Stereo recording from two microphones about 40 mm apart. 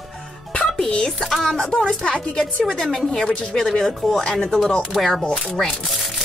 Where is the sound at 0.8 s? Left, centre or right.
Left; by 5.2 s centre.